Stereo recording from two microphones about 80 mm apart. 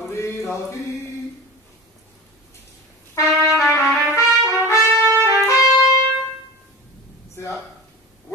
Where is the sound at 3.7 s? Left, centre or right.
Left.